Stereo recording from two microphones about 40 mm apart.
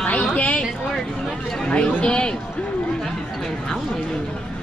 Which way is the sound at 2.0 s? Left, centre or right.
Left.